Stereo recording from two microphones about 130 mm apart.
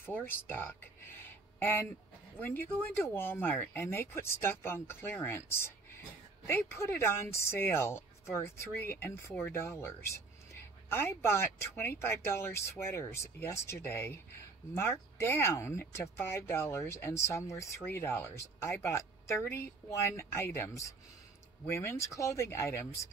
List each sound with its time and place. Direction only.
0.0 s speech: 15° left (ahead or behind)